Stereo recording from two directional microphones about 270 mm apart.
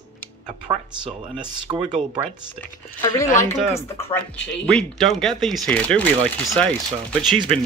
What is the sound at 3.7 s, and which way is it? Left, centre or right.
Speech, centre.